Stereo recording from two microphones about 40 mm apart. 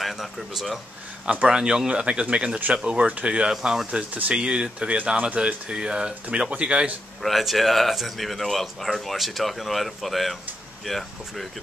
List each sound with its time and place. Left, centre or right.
0.0 s speech: centre
1.3 s speech: right
1.6 s speech: centre
3.4 s speech: centre
4.1 s speech: right
4.4 s speech: right
5.7 s speech: centre
6.5 s speech: right
7.2 s speech: centre